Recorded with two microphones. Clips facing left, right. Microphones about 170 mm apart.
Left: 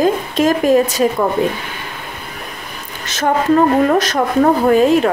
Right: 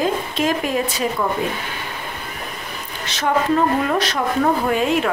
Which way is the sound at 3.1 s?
45° left (ahead or behind).